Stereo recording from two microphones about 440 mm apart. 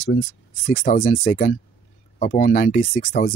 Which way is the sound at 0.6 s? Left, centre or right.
Centre.